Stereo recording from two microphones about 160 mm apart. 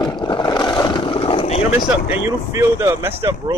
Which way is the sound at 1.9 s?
10° right (ahead or behind).